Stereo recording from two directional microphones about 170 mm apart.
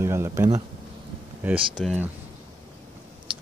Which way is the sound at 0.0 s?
15° right (ahead or behind).